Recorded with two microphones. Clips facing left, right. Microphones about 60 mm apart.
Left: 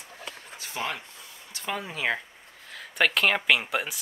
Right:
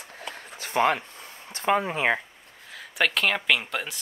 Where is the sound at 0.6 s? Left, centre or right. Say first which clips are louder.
Right 10 dB; right.